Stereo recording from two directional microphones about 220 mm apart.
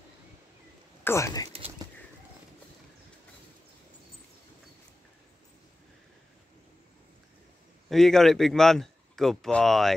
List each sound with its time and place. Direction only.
1.0 s speech: 15° left (ahead or behind)
1.5 s a sound: 25° right (ahead or behind)
7.9 s speech: centre (ahead or behind)